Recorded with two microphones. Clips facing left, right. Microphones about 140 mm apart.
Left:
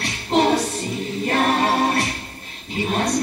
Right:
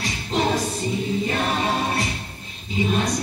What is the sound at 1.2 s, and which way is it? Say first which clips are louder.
A capella: left 4 dB; 65° left (ahead or behind).